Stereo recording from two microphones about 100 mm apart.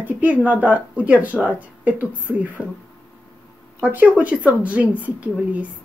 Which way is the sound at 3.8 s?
15° right (ahead or behind).